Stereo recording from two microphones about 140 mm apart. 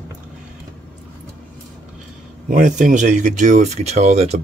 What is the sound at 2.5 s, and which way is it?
Speech, 65° right (ahead or behind).